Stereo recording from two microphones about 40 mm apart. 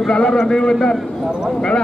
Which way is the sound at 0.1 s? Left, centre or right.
Centre.